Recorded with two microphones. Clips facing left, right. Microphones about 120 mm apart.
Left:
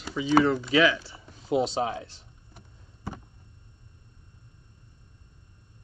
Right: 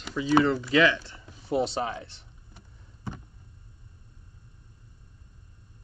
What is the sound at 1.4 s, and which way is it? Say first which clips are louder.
Speech: left 2 dB; 20° left (ahead or behind).